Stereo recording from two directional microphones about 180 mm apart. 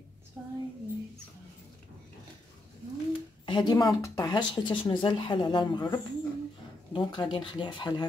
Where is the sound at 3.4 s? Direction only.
25° left (ahead or behind).